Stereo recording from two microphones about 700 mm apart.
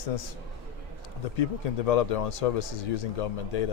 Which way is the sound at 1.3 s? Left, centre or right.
Left.